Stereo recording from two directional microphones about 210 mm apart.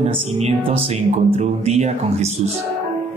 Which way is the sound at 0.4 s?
25° right (ahead or behind).